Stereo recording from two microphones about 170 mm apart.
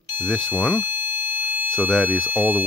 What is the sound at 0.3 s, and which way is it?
Speech, 5° left (ahead or behind).